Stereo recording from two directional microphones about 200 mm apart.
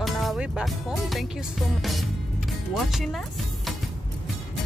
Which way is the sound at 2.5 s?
Centre (ahead or behind).